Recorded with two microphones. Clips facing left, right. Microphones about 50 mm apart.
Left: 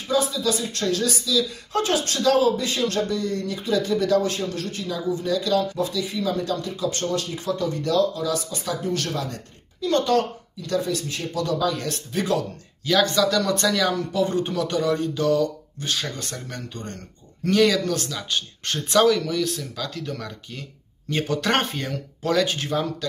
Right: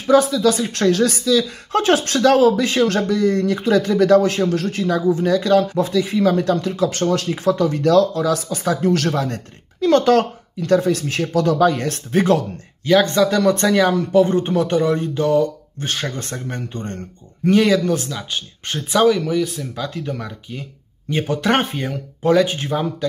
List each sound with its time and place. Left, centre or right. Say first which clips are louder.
0.0 s speech: right 9 dB; right
4.6 s speech: right 9 dB; right
11.7 s speech: right 8 dB; right
12.8 s speech: right 5 dB; right
17.5 s speech: right 4 dB; right